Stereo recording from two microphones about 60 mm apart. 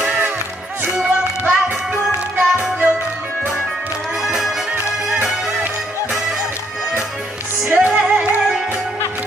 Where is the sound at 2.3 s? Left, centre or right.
Right.